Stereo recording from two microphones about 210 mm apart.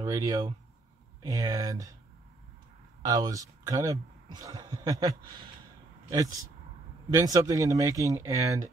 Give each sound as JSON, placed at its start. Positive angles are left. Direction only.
{"t": 0.0, "sound": "speech", "side_deg": -15}
{"t": 3.0, "sound": "speech", "side_deg": -15}